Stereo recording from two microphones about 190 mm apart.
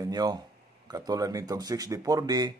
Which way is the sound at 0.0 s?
20° right (ahead or behind).